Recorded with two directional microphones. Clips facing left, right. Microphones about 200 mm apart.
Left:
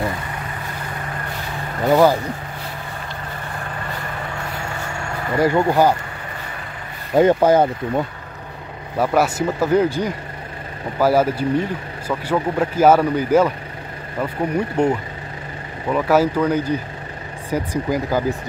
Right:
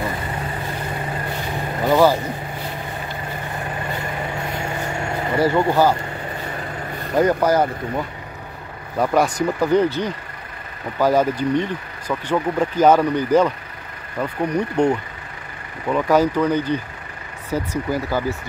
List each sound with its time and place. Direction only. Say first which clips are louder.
1.9 s speech: left 1 dB; 15° left (ahead or behind)
5.4 s speech: left 1 dB; 15° left (ahead or behind)
7.2 s speech: left 3 dB; 25° left (ahead or behind)
8.9 s speech: even; 5° left (ahead or behind)